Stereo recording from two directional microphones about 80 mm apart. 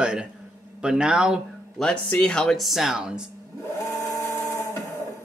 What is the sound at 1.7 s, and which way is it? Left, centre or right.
Speech, centre.